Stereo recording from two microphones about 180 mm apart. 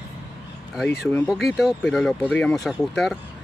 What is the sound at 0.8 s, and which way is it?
Speech, 60° left (ahead or behind).